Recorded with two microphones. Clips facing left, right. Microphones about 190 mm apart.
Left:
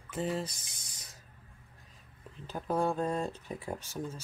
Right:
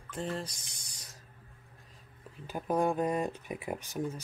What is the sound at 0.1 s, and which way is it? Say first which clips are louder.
Speech: left 3 dB; 5° left (ahead or behind).